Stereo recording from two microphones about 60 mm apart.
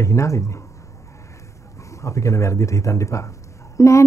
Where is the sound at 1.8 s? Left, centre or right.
Left.